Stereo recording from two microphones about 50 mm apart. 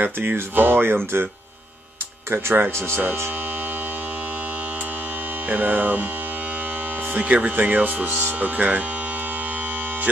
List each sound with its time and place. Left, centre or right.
0.0 s speech: right
2.3 s speech: right
5.5 s speech: right
7.2 s speech: right